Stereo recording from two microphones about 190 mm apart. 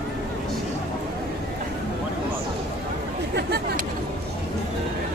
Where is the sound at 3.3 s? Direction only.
55° right (ahead or behind).